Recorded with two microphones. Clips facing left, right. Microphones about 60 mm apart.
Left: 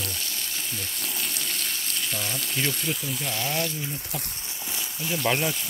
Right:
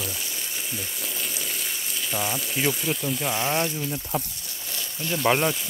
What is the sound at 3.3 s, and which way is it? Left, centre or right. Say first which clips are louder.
Speech: right 2 dB; right.